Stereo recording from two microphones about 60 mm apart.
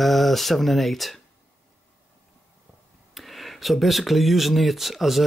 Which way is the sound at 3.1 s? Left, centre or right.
Centre.